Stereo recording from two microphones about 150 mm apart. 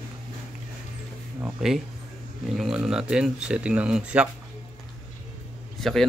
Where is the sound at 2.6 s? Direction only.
5° right (ahead or behind).